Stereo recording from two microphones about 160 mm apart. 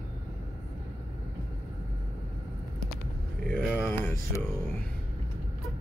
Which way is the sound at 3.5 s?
10° left (ahead or behind).